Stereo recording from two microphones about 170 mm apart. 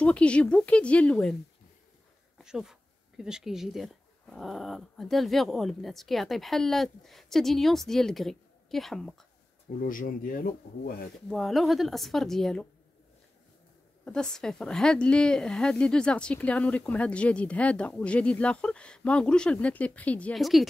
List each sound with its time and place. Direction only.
0.0 s a woman's voice: 5° left (ahead or behind)
2.3 s speech: centre (ahead or behind)
9.8 s speech: 55° left (ahead or behind)
11.2 s speech: centre (ahead or behind)
14.0 s a woman's voice: 5° left (ahead or behind)